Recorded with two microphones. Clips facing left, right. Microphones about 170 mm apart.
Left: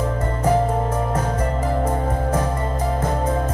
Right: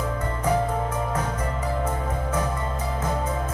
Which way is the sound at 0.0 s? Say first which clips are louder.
Left 5 dB; 40° left (ahead or behind).